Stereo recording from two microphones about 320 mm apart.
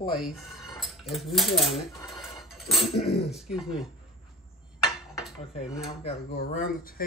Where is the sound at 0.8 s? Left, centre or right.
Centre.